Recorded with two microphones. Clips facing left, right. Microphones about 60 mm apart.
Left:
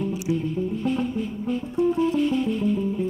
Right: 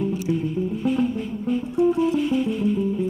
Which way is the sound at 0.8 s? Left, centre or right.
Centre.